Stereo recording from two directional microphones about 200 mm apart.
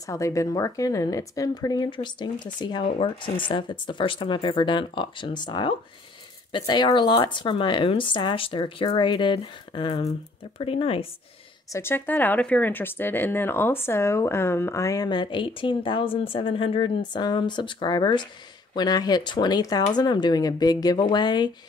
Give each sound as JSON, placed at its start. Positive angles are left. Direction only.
{"t": 0.0, "sound": "speech", "side_deg": 15}
{"t": 11.7, "sound": "speech", "side_deg": 10}